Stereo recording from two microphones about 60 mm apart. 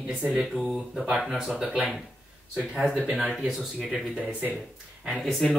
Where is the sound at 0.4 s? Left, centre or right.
Centre.